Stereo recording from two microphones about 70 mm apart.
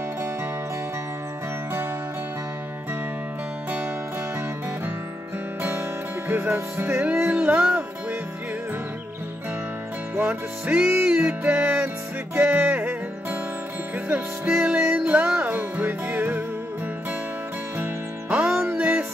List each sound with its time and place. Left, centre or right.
6.2 s music: right
10.1 s music: right
18.5 s music: right
18.8 s music: centre